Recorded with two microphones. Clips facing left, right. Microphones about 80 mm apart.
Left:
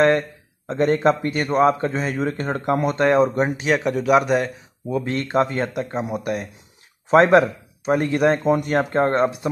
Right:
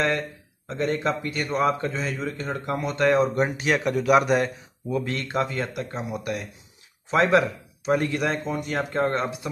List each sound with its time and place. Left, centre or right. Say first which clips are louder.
0.7 s speech: left 7 dB; left
1.7 s speech: left 5 dB; left
2.0 s speech: left 6 dB; left
3.3 s speech: left 3 dB; left
3.6 s a man's voice: left 1 dB; centre
5.0 s speech: left 6 dB; left
5.8 s speech: left 6 dB; left
6.0 s speech: left 5 dB; left